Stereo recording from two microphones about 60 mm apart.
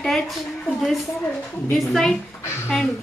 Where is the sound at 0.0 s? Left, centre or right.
Centre.